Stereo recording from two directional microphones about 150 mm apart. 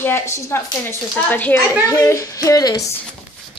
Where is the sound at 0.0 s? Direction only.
15° left (ahead or behind).